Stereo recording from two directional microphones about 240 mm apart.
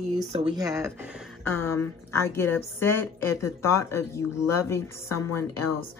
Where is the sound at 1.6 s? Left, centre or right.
Centre.